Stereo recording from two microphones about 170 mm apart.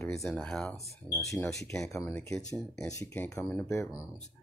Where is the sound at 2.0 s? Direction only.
15° left (ahead or behind).